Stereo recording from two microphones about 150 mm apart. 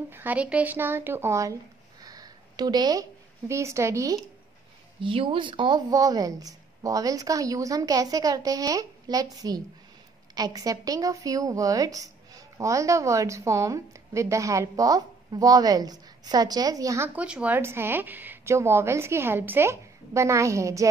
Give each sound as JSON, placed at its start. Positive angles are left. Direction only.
{"t": 0.1, "sound": "a woman's voice", "side_deg": -10}
{"t": 5.0, "sound": "a woman's voice", "side_deg": -35}